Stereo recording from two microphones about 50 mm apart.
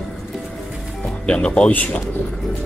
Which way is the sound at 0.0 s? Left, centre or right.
Centre.